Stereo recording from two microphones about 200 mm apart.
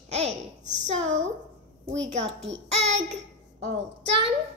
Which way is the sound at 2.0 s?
70° right (ahead or behind).